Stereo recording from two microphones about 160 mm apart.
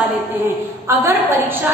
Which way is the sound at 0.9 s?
15° right (ahead or behind).